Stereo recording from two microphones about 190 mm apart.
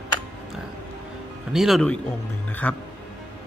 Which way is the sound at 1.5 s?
Centre (ahead or behind).